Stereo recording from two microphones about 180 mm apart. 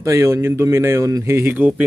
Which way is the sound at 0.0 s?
15° right (ahead or behind).